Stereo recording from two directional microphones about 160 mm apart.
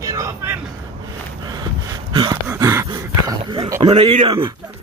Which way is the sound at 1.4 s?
25° right (ahead or behind).